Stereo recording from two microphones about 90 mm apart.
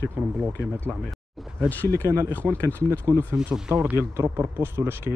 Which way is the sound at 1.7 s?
20° left (ahead or behind).